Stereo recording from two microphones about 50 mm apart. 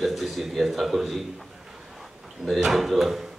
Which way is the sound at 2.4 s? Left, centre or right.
Centre.